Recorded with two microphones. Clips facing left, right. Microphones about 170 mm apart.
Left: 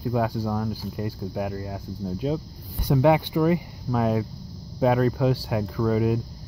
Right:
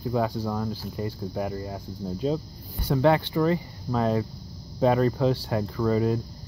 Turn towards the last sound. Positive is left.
turn(degrees=5)  # may be behind; listen again after turning